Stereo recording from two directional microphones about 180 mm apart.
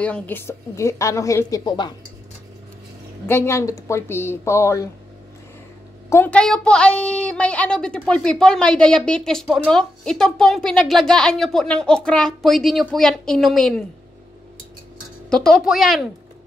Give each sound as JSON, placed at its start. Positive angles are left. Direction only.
{"t": 0.0, "sound": "a woman's voice", "side_deg": 10}
{"t": 3.3, "sound": "a woman's voice", "side_deg": 15}
{"t": 6.0, "sound": "a woman's voice", "side_deg": 10}
{"t": 15.2, "sound": "a woman's voice", "side_deg": 5}